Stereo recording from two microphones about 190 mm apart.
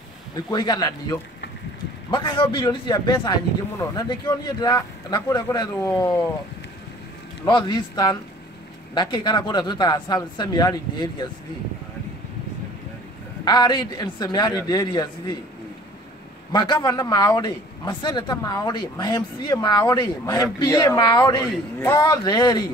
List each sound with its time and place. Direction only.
0.5 s speech: 20° left (ahead or behind)
7.4 s speech: 25° left (ahead or behind)
13.5 s speech: 20° left (ahead or behind)
16.5 s speech: 20° left (ahead or behind)